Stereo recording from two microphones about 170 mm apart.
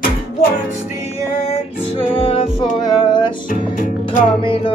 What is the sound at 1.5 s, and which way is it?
Music, 35° left (ahead or behind).